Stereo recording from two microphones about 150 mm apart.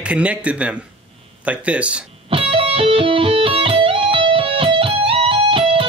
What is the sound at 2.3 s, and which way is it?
Music, 35° right (ahead or behind).